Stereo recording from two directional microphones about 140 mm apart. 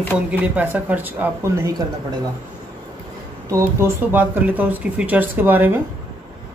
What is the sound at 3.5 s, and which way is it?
Speech, 20° right (ahead or behind).